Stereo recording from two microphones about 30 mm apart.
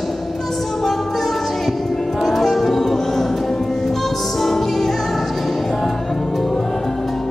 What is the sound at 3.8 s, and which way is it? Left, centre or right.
Music, centre.